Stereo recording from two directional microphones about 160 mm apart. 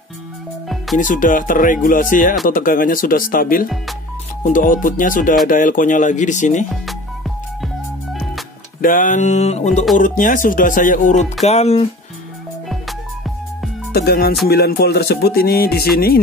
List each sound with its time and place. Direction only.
0.9 s speech: 55° left (ahead or behind)
6.7 s music: centre (ahead or behind)
8.8 s speech: 55° left (ahead or behind)
9.9 s speech: 55° left (ahead or behind); by 11.9 s 40° left (ahead or behind)
13.9 s music: 75° left (ahead or behind)